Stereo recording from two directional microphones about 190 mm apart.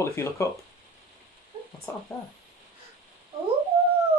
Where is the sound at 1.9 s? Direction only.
15° left (ahead or behind).